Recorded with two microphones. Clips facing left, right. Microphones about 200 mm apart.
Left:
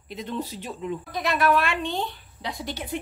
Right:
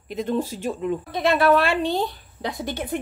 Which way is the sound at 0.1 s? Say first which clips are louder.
Right 7 dB; 50° right (ahead or behind).